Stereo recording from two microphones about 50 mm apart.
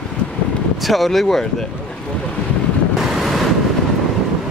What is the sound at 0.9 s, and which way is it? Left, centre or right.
Speech, centre.